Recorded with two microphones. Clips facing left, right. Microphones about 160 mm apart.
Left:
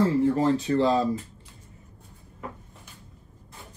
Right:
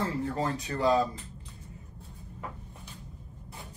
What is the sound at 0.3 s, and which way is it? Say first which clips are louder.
Speech: left 9 dB; 20° left (ahead or behind).